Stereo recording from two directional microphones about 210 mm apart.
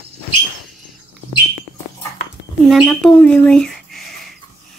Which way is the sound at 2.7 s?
Centre (ahead or behind).